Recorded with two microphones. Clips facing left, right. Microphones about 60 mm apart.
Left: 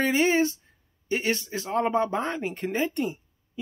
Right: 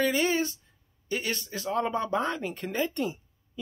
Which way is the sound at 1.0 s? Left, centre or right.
Left.